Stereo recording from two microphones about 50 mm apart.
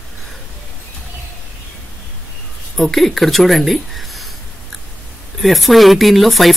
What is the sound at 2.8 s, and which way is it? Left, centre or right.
Speech, centre.